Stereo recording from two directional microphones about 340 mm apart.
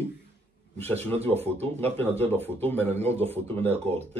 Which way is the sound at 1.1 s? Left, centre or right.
Centre.